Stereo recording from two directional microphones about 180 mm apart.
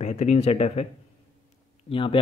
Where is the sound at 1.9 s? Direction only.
30° left (ahead or behind).